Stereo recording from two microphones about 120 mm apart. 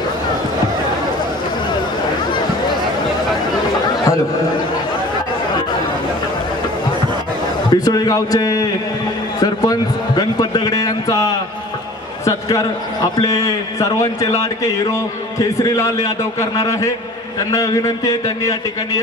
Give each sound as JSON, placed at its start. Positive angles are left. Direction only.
{"t": 7.7, "sound": "a man's voice", "side_deg": 30}